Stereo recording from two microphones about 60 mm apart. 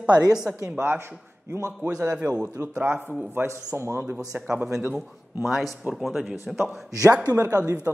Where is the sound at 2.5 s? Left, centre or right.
Right.